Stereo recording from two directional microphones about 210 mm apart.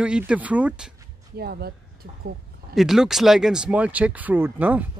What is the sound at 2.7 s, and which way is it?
Speech, centre (ahead or behind).